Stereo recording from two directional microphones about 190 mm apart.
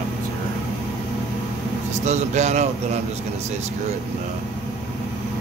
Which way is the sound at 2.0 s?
35° right (ahead or behind).